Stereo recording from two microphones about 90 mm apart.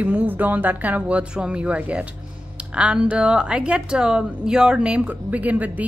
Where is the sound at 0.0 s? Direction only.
15° right (ahead or behind).